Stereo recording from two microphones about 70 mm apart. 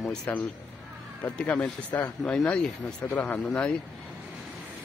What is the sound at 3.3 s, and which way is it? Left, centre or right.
Speech, centre.